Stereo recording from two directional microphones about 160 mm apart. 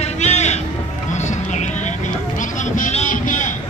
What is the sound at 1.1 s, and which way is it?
Vehicle, 50° left (ahead or behind).